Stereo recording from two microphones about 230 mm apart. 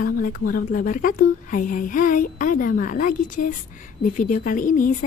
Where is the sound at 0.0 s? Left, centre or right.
Left.